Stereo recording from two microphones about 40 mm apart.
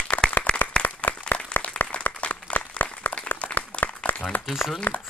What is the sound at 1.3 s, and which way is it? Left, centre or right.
Applause, left.